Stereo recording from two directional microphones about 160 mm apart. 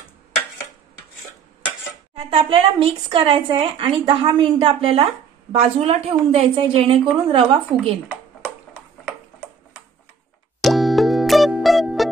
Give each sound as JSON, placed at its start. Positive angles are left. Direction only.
{"t": 2.1, "sound": "speech", "side_deg": -35}
{"t": 10.6, "sound": "music", "side_deg": 0}